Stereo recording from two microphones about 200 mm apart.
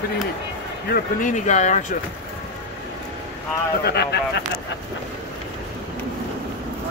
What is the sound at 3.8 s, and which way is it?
Speech, 55° left (ahead or behind).